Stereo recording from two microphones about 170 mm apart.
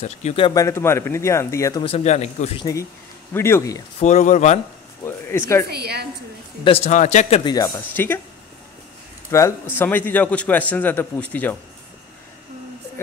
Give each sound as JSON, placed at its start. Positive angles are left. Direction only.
{"t": 0.0, "sound": "speech", "side_deg": 40}
{"t": 0.6, "sound": "speech", "side_deg": 15}
{"t": 1.8, "sound": "speech", "side_deg": 35}
{"t": 2.6, "sound": "speech", "side_deg": 20}
{"t": 4.0, "sound": "speech", "side_deg": 45}
{"t": 5.0, "sound": "speech", "side_deg": 15}
{"t": 5.7, "sound": "a woman's voice", "side_deg": -70}
{"t": 6.6, "sound": "speech", "side_deg": 35}
{"t": 7.5, "sound": "speech", "side_deg": 20}
{"t": 9.3, "sound": "speech", "side_deg": 15}